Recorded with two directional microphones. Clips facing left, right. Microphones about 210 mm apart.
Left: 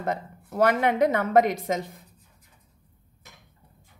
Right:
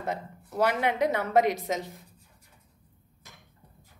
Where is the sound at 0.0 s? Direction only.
50° left (ahead or behind).